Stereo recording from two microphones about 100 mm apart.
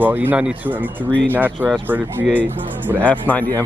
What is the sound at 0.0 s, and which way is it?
Speech, 20° right (ahead or behind).